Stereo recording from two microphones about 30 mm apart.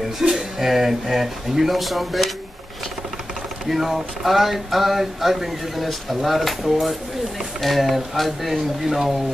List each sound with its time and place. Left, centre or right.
0.2 s speech: centre
3.6 s speech: centre